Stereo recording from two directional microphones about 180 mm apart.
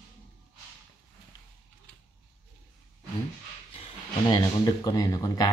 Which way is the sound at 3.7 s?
25° left (ahead or behind).